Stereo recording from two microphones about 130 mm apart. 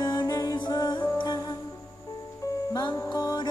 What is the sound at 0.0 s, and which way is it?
Music, 35° left (ahead or behind).